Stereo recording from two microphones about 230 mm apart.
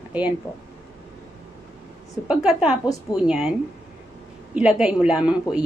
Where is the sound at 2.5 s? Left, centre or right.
Centre.